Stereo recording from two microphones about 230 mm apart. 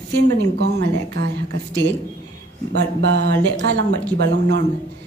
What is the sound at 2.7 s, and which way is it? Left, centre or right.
A woman's voice, right.